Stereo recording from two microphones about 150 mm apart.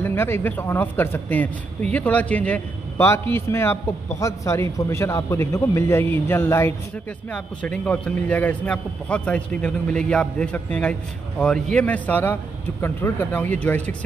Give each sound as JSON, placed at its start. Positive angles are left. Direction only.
{"t": 0.0, "sound": "a man's voice", "side_deg": 15}